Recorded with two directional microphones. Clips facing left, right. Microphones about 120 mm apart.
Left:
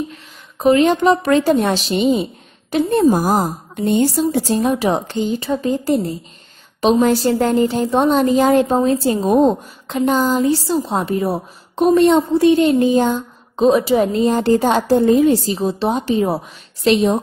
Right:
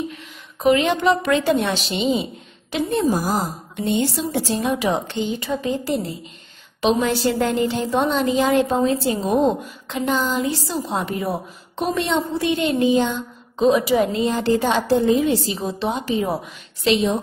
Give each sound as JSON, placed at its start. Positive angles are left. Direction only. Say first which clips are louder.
{"t": 0.1, "sound": "a woman's voice", "louder": "right 1 dB", "side_deg": 35}